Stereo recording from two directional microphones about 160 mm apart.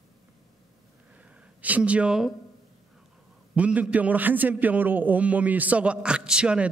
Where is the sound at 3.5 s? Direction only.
10° right (ahead or behind).